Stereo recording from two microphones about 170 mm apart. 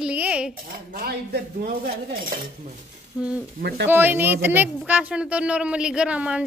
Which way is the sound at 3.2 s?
5° right (ahead or behind).